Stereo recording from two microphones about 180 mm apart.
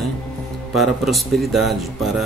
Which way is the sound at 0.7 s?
Centre (ahead or behind).